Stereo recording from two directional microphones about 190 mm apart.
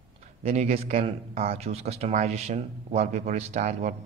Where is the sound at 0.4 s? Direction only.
35° right (ahead or behind).